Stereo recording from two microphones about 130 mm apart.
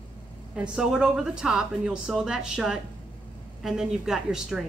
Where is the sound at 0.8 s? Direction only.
5° right (ahead or behind).